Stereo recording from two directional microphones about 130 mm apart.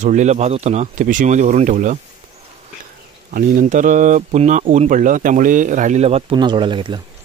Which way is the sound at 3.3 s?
80° right.